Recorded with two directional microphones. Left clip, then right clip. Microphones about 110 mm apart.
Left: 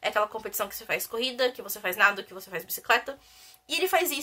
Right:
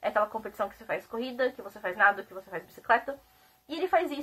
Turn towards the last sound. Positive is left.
turn(degrees=15)  # may be behind; listen again after turning